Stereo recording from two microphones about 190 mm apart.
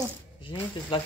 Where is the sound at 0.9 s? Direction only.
25° left (ahead or behind).